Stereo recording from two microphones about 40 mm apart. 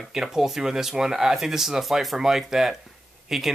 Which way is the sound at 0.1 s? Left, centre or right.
Centre.